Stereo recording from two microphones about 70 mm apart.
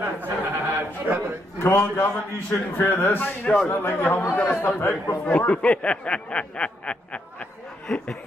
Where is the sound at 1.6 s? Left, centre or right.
Left.